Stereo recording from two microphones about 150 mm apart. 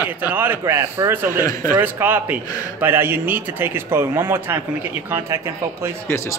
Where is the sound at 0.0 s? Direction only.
10° right (ahead or behind).